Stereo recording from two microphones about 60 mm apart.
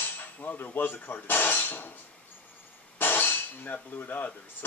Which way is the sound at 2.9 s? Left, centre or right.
Left.